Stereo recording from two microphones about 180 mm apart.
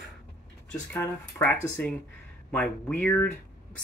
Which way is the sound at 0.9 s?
10° left (ahead or behind).